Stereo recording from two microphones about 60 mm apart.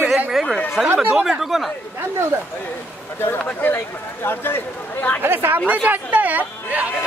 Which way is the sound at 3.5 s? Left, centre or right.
Left.